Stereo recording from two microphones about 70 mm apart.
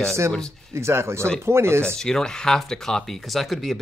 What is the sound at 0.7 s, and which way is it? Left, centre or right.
Speech, right.